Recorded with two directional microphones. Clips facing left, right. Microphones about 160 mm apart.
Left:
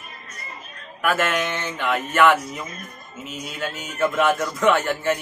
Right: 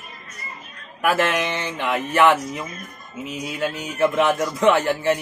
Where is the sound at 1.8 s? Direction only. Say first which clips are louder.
Right 1 dB; 15° right (ahead or behind).